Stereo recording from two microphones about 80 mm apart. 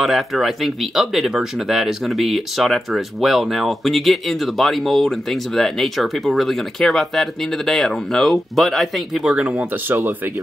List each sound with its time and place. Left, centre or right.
0.0 s speech: centre
9.6 s speech: right